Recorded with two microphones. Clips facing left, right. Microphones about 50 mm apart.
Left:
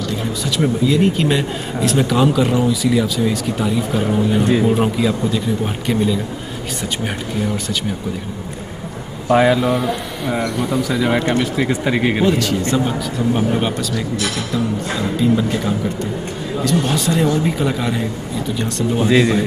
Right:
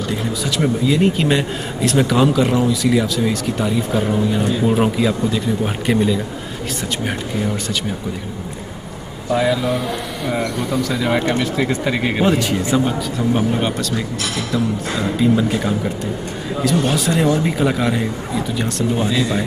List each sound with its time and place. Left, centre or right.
0.6 s speech: centre
9.3 s speech: left
9.6 s speech: centre
12.3 s speech: centre
12.6 s speech: centre
19.0 s speech: left